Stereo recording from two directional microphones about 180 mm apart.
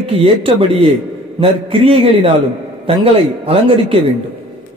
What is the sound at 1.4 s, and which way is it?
A man's voice, 30° right (ahead or behind).